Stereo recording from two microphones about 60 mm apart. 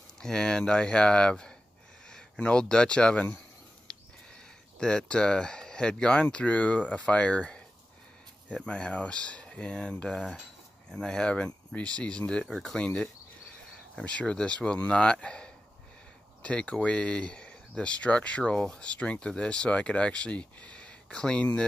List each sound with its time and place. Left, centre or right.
0.2 s speech: centre
3.9 s a sound: centre
4.7 s speech: centre
8.6 s speech: centre